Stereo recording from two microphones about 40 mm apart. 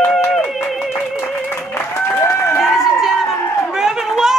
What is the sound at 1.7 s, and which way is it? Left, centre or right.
Applause, left.